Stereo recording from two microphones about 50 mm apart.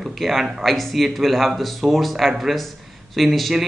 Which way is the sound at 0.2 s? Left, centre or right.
Centre.